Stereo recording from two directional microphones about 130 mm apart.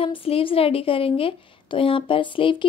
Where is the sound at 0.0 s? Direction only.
45° left (ahead or behind).